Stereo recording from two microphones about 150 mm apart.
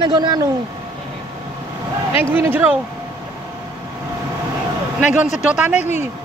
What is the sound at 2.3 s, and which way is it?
Speech, 10° right (ahead or behind).